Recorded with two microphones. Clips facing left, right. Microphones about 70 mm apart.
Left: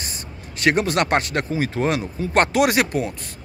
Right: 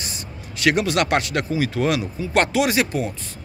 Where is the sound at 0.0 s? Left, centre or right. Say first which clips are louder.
Right 1 dB; left.